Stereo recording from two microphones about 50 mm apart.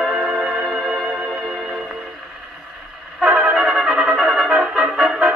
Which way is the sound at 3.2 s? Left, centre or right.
Centre.